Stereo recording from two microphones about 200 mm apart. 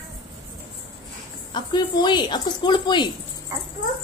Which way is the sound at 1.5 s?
20° left (ahead or behind).